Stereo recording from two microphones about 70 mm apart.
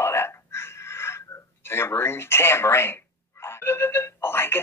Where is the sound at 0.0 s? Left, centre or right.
Left.